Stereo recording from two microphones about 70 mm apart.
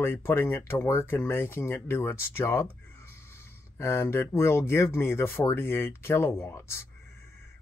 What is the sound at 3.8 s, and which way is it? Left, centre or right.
Speech, left.